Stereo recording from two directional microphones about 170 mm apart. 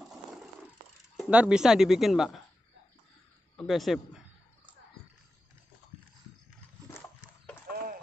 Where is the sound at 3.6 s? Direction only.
Centre (ahead or behind).